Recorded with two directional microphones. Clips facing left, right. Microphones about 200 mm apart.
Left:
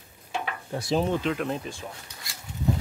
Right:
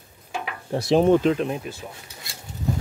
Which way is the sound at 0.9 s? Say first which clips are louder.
Right 8 dB; 55° right (ahead or behind).